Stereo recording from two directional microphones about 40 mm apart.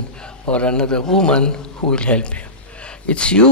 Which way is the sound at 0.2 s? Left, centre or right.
Left.